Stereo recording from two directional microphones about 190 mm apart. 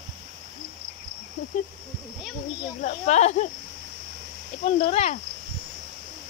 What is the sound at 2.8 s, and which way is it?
Speech, 35° left (ahead or behind).